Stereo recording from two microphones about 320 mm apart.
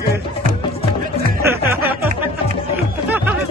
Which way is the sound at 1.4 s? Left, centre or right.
Centre.